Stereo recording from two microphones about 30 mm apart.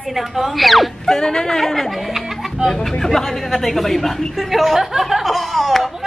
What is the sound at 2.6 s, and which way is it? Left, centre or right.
Speech, centre.